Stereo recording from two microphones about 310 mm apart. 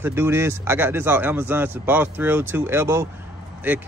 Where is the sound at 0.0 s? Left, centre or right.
Centre.